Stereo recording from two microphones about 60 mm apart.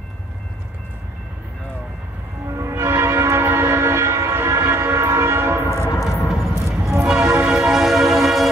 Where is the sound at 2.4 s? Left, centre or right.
Right.